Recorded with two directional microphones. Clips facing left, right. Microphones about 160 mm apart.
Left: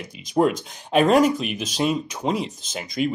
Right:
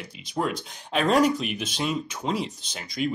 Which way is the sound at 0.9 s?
15° left (ahead or behind).